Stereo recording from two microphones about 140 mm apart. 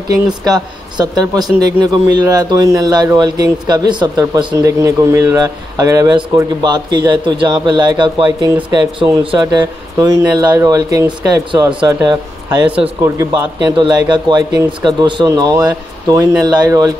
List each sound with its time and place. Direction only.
0.5 s speech: 30° right (ahead or behind)